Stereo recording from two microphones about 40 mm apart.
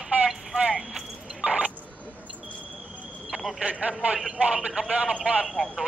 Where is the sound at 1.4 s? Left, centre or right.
Right.